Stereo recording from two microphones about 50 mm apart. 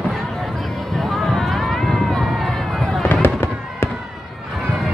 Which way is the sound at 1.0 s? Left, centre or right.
Centre.